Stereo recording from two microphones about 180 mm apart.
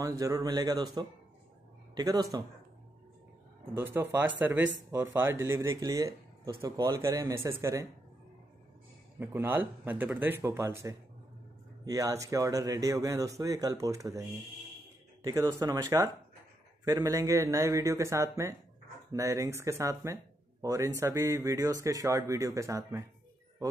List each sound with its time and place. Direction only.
0.2 s speech: 20° right (ahead or behind)
2.0 s a man's voice: 20° right (ahead or behind)
3.7 s speech: 10° right (ahead or behind)
9.2 s speech: 10° right (ahead or behind)